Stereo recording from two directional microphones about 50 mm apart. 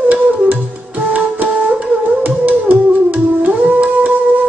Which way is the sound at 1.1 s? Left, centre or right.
Right.